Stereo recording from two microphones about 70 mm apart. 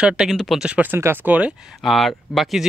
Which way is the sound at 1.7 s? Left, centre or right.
Centre.